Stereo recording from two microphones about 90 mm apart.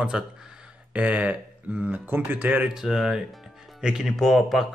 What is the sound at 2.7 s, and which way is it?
Speech, 5° right (ahead or behind).